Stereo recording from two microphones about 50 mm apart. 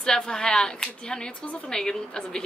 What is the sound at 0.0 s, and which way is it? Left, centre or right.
Speech, centre.